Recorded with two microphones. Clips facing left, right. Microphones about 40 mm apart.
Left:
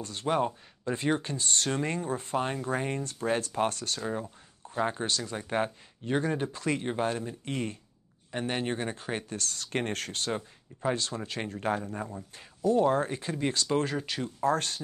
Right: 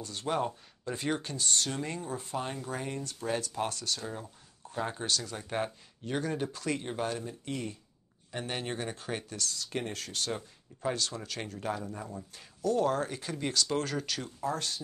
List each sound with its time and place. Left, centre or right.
0.0 s speech: left
0.3 s speech: centre
0.9 s speech: left
4.1 s speech: left
8.3 s speech: centre; by 12.1 s left
12.4 s speech: left
14.4 s speech: left